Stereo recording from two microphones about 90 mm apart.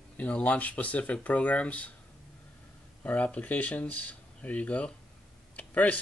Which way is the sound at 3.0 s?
15° left (ahead or behind).